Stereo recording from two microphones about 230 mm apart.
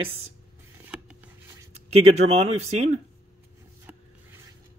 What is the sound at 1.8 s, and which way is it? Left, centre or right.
Speech, right.